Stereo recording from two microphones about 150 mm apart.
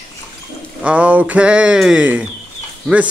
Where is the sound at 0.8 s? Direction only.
10° right (ahead or behind).